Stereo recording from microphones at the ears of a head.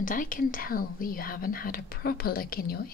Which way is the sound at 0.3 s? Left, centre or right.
Left.